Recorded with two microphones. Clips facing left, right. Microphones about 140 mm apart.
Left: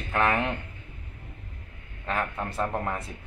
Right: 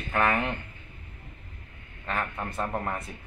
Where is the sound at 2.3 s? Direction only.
Centre (ahead or behind).